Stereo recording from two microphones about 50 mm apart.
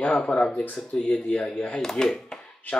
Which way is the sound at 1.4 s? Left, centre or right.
Centre.